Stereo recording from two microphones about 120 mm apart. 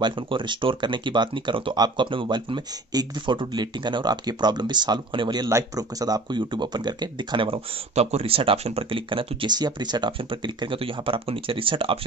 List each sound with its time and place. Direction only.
0.0 s speech: 40° right (ahead or behind)
5.5 s speech: 30° right (ahead or behind); by 12.0 s 45° right (ahead or behind)